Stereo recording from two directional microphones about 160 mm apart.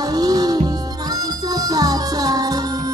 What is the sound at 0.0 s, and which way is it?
Music, 25° right (ahead or behind).